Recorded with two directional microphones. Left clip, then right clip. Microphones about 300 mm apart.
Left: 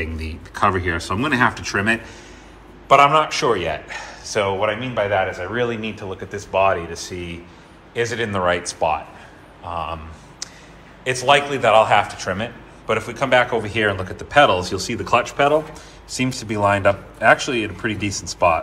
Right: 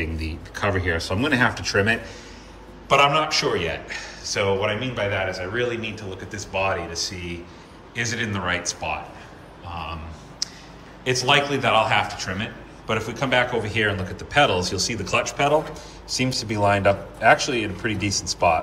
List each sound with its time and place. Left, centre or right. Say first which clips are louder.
0.0 s a man's voice: left 1 dB; centre
10.4 s a sound: right 4 dB; centre
11.1 s a man's voice: left 3 dB; centre